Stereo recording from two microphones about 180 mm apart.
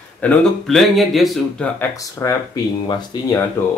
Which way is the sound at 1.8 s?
15° left (ahead or behind).